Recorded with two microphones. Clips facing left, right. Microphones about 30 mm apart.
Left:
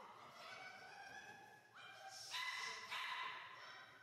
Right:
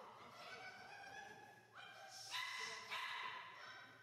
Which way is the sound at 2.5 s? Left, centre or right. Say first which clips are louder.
Even; centre.